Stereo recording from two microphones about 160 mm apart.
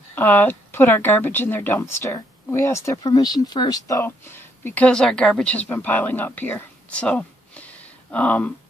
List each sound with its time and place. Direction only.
0.1 s speech: 10° left (ahead or behind)